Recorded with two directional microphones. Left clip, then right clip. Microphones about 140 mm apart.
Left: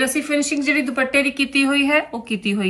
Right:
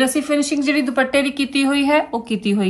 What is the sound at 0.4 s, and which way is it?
A woman's voice, 25° right (ahead or behind).